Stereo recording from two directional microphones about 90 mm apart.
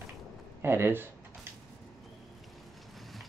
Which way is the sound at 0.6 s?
25° right (ahead or behind).